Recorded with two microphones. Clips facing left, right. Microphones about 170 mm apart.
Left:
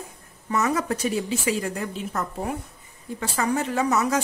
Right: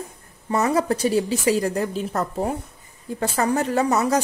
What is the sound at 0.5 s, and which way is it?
A woman's voice, 35° right (ahead or behind).